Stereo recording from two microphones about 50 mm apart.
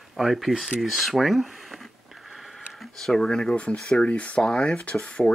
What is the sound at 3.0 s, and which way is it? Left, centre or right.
Speech, centre.